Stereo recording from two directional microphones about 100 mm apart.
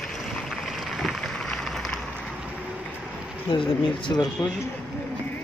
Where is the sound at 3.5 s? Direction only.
55° left (ahead or behind).